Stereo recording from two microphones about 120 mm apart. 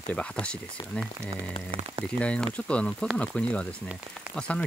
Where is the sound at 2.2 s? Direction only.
10° left (ahead or behind).